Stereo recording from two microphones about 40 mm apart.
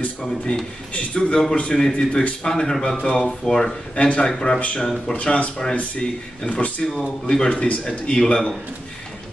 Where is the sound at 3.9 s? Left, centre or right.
Left.